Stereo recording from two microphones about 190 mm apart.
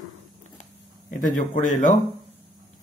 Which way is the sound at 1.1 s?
45° left (ahead or behind).